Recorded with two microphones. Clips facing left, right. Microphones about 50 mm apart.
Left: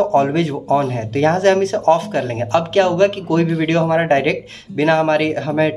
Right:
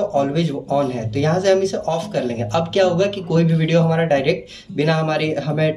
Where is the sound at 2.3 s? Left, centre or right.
Left.